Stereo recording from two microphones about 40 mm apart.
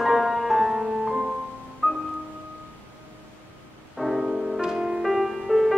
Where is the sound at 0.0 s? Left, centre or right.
Centre.